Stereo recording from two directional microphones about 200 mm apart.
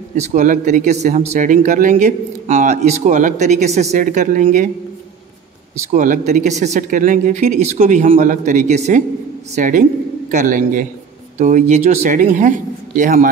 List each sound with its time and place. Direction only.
0.1 s speech: 40° right (ahead or behind)
5.9 s speech: 40° right (ahead or behind)